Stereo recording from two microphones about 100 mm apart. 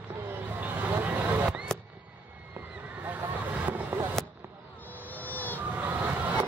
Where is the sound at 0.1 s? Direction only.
20° right (ahead or behind).